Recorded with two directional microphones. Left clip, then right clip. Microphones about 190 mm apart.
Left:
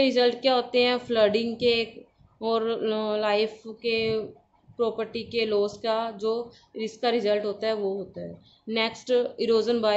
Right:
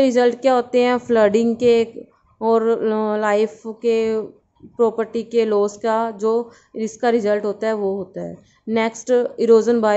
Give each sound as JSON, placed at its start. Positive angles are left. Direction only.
{"t": 0.0, "sound": "speech", "side_deg": -45}